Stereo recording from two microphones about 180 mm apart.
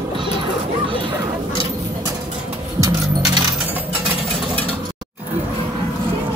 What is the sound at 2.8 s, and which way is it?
Keys jangling, 20° right (ahead or behind).